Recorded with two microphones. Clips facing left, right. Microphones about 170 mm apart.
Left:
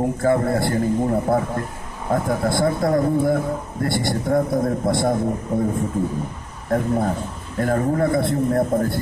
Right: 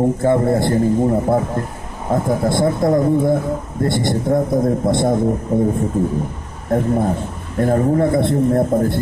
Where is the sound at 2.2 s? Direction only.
20° right (ahead or behind).